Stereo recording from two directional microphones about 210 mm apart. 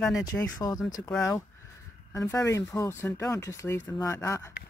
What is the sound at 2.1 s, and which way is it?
Speech, 15° left (ahead or behind).